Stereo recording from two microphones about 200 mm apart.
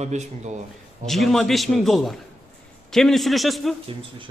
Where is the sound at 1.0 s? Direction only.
Centre (ahead or behind).